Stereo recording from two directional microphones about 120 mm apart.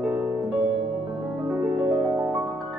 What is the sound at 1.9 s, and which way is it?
Music, 25° right (ahead or behind).